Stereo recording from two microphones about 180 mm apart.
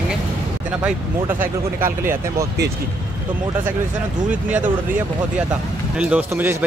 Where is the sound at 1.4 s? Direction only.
15° right (ahead or behind).